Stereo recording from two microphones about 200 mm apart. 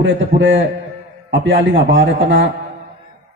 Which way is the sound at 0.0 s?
70° right (ahead or behind).